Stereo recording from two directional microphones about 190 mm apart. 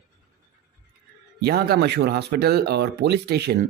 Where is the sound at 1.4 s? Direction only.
55° right (ahead or behind).